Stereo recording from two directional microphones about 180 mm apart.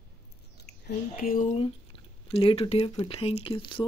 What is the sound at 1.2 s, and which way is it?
Speech, 50° left (ahead or behind).